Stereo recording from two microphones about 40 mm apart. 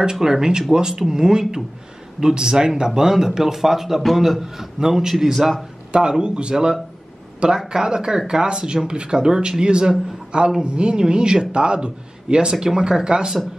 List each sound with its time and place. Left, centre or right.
0.0 s a man's voice: centre
5.9 s a man's voice: right